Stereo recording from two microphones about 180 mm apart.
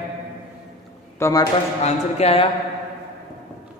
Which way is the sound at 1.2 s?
20° left (ahead or behind).